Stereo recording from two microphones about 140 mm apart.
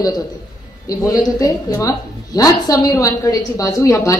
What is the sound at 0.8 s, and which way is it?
A woman's voice, 25° left (ahead or behind).